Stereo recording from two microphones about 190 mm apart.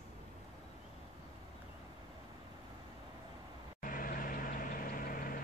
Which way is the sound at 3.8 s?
45° left (ahead or behind).